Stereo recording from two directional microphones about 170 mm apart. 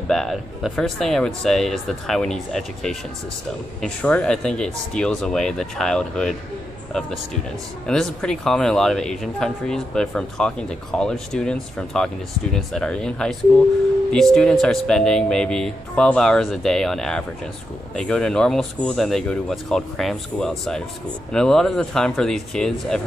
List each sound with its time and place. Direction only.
0.1 s speech: centre (ahead or behind)
7.8 s speech: 5° left (ahead or behind)